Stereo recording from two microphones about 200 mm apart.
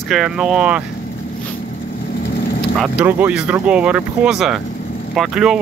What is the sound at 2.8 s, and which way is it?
Speech, 5° right (ahead or behind).